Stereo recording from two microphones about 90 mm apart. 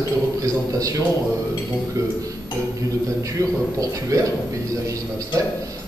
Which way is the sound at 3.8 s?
35° right (ahead or behind).